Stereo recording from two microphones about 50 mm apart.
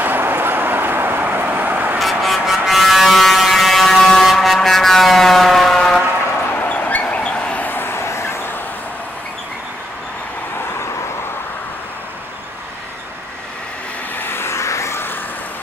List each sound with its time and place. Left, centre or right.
0.0 s vehicle: right
2.0 s vehicle: centre
2.6 s buzzer: centre
4.3 s vehicle: centre
6.6 s a sound: left
7.6 s vehicle: left
14.1 s vehicle: left